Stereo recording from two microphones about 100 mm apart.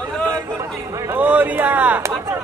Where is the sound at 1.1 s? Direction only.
20° right (ahead or behind).